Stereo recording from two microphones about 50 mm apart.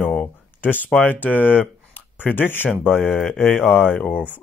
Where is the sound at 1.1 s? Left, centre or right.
Left.